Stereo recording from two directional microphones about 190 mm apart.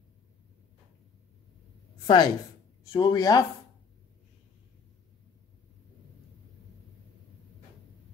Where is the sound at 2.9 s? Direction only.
20° left (ahead or behind).